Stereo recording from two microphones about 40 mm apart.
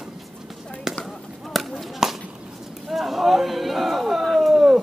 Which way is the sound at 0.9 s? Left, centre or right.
Centre.